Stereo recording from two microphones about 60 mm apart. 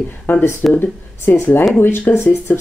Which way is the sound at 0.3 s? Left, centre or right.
Left.